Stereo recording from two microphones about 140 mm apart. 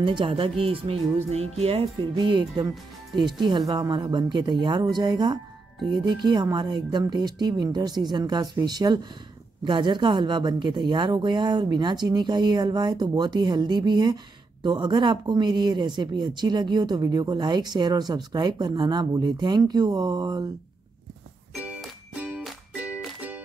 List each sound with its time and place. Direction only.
0.0 s speech: 40° right (ahead or behind)
21.5 s music: 10° right (ahead or behind)